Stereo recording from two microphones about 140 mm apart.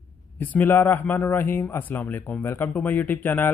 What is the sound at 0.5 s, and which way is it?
Speech, 15° left (ahead or behind).